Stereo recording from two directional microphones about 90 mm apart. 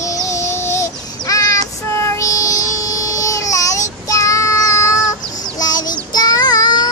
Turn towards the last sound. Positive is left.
turn(degrees=45)  # may be behind; listen again after turning